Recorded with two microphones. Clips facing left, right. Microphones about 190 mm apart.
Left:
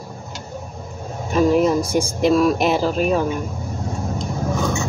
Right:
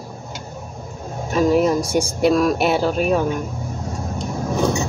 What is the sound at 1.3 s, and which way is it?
Speech, centre (ahead or behind).